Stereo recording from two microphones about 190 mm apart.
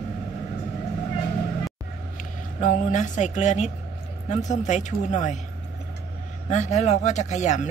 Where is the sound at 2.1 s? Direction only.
40° left (ahead or behind).